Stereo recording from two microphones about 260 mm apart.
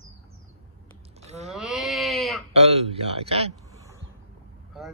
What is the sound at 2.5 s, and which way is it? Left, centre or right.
Speech, right.